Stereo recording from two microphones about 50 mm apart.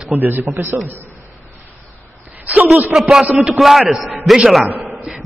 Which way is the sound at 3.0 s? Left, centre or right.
Centre.